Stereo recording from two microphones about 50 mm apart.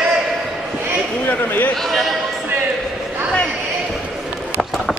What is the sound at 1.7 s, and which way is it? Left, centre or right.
Speech, centre.